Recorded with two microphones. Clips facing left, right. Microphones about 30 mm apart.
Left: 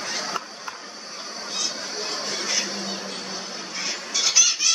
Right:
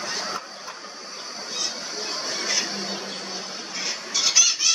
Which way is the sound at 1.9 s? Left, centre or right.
Centre.